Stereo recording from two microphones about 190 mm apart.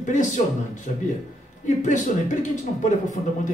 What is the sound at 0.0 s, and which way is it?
Speech, 40° left (ahead or behind).